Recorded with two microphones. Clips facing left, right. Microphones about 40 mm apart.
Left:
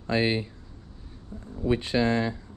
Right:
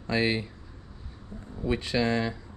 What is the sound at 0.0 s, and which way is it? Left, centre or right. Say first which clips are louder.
Speech: left 1 dB; left.